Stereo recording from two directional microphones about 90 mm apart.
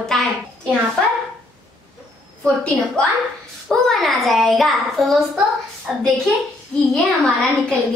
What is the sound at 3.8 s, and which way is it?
A child's voice, centre (ahead or behind).